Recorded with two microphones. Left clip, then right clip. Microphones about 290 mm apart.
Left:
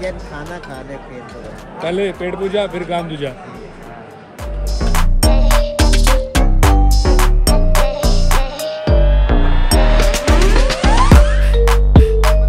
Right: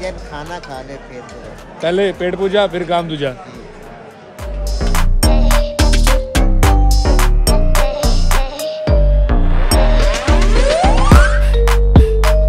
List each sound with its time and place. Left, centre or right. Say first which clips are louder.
1.8 s speech: right 4 dB; right
4.7 s music: even; centre